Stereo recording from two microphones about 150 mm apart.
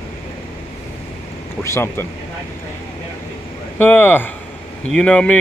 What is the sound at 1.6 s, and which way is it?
Speech, 15° left (ahead or behind).